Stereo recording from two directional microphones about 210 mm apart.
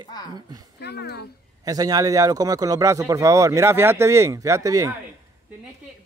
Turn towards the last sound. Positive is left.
turn(degrees=-15)  # may be behind; listen again after turning